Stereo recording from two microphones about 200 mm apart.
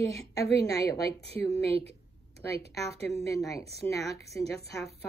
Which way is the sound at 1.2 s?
30° right (ahead or behind).